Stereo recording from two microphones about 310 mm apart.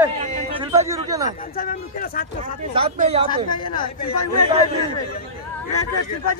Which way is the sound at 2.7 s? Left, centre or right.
Centre.